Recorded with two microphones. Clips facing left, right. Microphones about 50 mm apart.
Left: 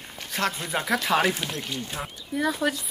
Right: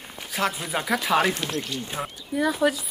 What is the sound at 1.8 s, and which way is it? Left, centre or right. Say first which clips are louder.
Speech: right 2 dB; centre.